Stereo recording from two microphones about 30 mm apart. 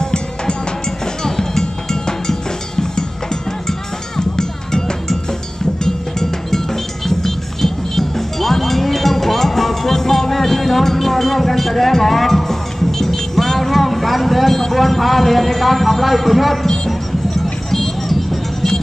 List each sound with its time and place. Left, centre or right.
0.0 s music: left
4.2 s cowbell: left
7.1 s music: centre
16.6 s music: centre